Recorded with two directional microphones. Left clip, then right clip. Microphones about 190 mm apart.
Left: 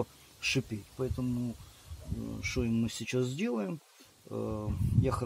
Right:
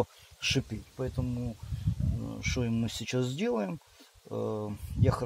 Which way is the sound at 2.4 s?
40° right (ahead or behind).